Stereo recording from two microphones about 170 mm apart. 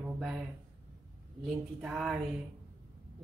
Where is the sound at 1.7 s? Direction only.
5° right (ahead or behind).